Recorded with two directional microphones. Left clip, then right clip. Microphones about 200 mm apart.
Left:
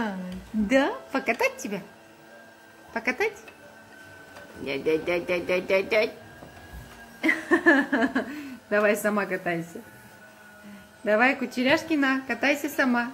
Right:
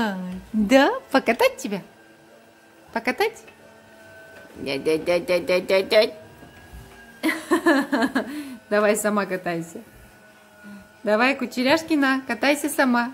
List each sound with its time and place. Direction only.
0.7 s speech: 25° right (ahead or behind)
2.9 s a woman's voice: 15° right (ahead or behind)
4.6 s speech: 15° right (ahead or behind)
7.2 s speech: 20° right (ahead or behind)
11.1 s speech: 25° right (ahead or behind)